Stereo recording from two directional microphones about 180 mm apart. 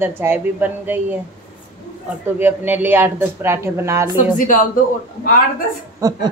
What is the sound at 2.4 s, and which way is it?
Speech, 10° right (ahead or behind).